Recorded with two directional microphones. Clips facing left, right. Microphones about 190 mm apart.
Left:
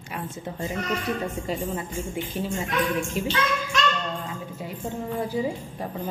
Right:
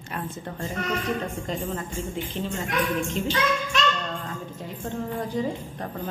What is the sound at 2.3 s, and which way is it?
A woman's voice, 10° left (ahead or behind).